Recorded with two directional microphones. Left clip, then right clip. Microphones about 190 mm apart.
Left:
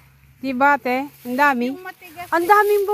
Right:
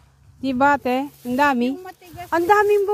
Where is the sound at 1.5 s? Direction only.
40° right (ahead or behind).